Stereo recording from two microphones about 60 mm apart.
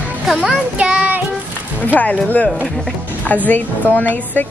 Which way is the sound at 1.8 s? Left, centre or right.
Left.